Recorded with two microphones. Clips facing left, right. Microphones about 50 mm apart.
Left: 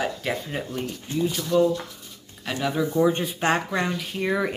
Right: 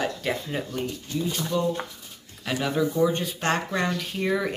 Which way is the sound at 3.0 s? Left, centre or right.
Left.